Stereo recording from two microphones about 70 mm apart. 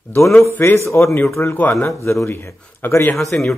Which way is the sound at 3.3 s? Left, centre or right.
Centre.